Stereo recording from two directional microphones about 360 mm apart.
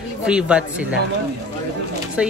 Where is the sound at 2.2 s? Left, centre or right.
Centre.